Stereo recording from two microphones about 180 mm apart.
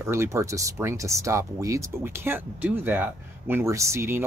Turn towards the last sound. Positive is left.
turn(degrees=-15)  # may be behind; listen again after turning